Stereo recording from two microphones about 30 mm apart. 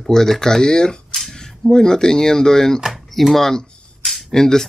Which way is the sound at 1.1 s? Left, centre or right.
Centre.